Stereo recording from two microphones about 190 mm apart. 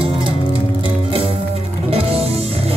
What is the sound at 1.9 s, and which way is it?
Music, 30° right (ahead or behind).